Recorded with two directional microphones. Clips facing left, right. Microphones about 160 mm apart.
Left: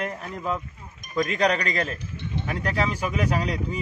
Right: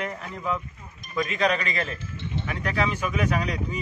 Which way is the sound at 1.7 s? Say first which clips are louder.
Left 2 dB; 40° left (ahead or behind).